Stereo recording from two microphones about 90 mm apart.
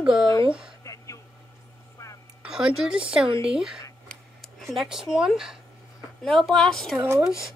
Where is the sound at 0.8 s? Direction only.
35° left (ahead or behind).